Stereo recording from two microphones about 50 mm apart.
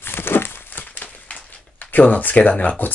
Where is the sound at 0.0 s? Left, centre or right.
Left.